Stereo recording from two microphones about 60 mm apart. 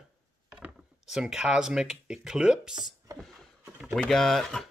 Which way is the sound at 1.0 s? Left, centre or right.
Centre.